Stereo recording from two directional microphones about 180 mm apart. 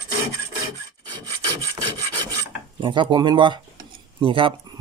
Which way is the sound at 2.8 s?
25° right (ahead or behind).